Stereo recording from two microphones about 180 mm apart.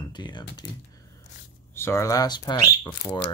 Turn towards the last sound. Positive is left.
turn(degrees=20)  # may be behind; listen again after turning